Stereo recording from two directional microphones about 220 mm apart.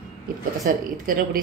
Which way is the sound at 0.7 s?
40° right (ahead or behind).